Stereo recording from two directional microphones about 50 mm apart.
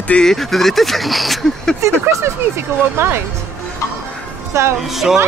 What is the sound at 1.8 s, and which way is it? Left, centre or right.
Speech, right.